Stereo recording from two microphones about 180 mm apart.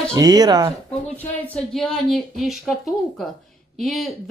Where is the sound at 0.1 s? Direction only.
20° right (ahead or behind).